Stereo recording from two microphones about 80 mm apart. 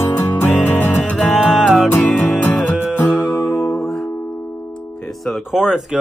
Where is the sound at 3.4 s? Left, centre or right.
Left.